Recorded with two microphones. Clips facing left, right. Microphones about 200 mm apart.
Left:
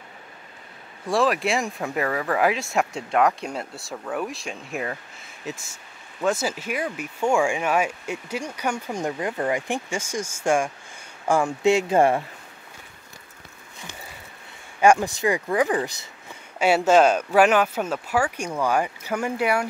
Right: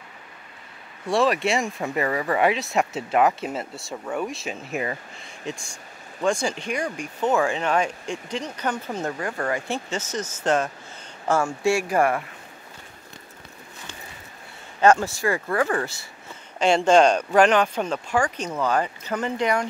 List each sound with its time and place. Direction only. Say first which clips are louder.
1.0 s speech: right 1 dB; centre (ahead or behind); by 12.3 s 25° left (ahead or behind)
14.8 s speech: even; 15° left (ahead or behind)
16.5 s speech: even; 5° left (ahead or behind)